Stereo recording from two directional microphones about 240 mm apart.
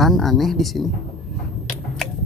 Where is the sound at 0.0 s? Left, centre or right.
Centre.